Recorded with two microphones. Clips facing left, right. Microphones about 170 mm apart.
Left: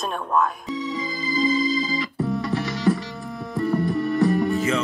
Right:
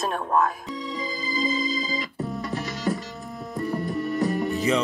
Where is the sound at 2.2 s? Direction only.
90° left.